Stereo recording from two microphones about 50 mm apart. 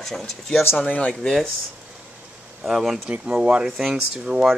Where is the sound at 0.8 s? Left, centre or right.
Left.